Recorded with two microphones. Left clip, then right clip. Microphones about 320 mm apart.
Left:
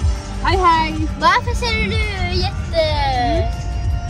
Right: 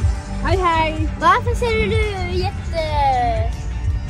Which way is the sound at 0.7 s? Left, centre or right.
Centre.